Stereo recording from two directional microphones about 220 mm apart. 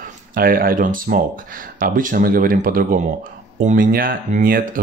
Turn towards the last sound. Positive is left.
turn(degrees=-40)  # may be behind; listen again after turning